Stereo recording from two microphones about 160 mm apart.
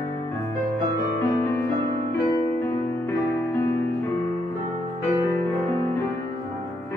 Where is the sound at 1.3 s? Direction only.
15° left (ahead or behind).